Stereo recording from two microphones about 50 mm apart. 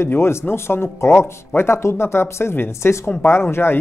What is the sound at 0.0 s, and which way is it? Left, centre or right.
Speech, left.